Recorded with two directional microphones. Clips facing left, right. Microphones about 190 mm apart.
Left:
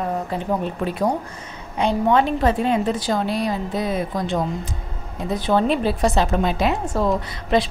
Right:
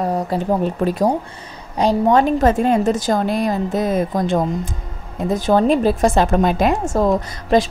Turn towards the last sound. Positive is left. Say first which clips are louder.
# right 4 dB
turn(degrees=-40)  # may be behind; listen again after turning